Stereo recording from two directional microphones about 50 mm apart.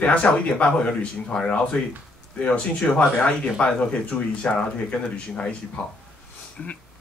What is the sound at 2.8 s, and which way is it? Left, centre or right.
Speech, left.